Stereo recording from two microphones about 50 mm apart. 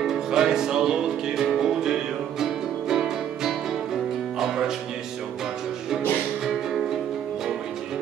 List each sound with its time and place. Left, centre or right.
0.0 s music: centre